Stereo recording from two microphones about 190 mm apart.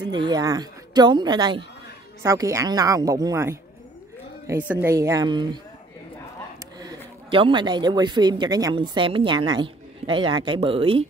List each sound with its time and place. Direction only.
0.0 s a woman's voice: 25° right (ahead or behind)
6.8 s speech: 25° right (ahead or behind)